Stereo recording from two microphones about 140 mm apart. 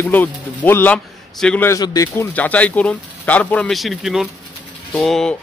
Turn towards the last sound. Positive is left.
turn(degrees=5)  # may be behind; listen again after turning